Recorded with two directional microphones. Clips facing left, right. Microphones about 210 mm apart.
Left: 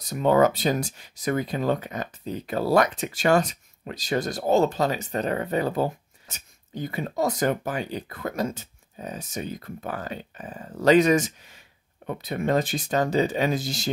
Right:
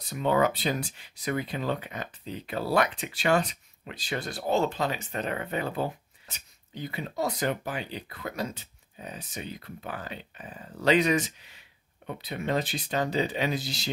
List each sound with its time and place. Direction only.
0.0 s speech: 45° left (ahead or behind)